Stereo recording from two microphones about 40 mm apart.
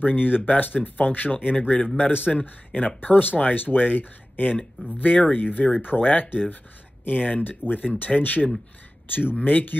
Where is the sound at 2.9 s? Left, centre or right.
Left.